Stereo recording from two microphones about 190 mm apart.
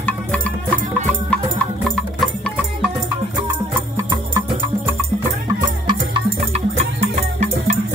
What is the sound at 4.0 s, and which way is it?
Music, 15° right (ahead or behind).